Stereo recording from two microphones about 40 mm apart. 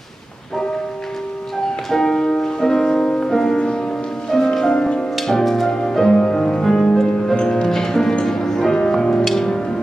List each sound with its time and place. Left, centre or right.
1.9 s music: centre
5.2 s music: centre
5.7 s music: centre
9.2 s music: centre